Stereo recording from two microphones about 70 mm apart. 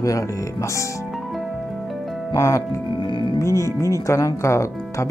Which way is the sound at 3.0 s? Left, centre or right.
Left.